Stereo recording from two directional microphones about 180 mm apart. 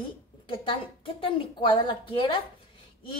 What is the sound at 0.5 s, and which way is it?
A woman's voice, 30° left (ahead or behind).